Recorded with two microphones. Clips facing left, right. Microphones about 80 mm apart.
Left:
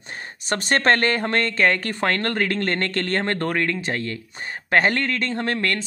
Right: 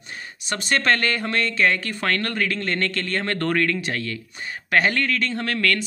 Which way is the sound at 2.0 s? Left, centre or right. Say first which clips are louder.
Left 2 dB; left.